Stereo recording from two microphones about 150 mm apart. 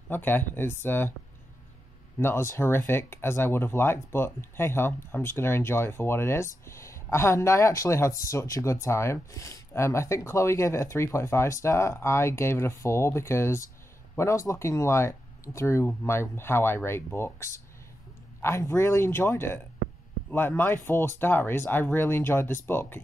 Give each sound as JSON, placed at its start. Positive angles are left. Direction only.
{"t": 0.1, "sound": "speech", "side_deg": 15}
{"t": 2.1, "sound": "speech", "side_deg": 15}